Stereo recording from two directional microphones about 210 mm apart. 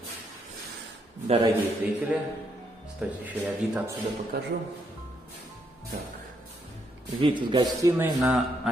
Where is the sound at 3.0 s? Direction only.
10° right (ahead or behind).